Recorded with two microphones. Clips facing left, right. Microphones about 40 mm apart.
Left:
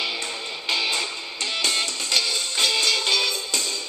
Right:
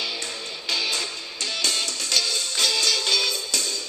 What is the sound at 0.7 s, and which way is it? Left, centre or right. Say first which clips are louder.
Music: left 2 dB; left.